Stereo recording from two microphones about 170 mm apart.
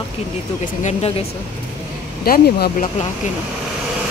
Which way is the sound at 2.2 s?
60° left (ahead or behind).